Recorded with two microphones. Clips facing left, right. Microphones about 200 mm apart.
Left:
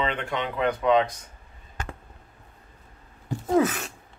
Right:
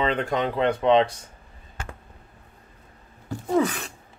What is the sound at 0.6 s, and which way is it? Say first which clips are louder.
Speech: right 2 dB; 25° right (ahead or behind).